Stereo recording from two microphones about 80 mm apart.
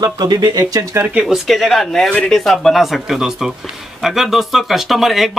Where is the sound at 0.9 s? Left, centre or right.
Centre.